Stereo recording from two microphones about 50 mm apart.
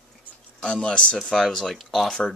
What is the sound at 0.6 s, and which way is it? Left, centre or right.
Speech, centre.